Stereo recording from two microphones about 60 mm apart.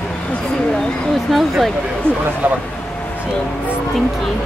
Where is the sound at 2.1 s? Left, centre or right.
Right.